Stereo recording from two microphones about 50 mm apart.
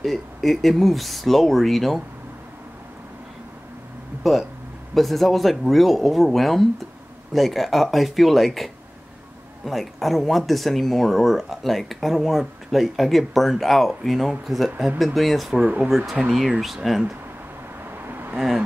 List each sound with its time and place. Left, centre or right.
0.0 s speech: centre
4.2 s speech: centre
9.7 s speech: centre
15.5 s speech: centre
16.2 s speech: centre
18.0 s a sound: right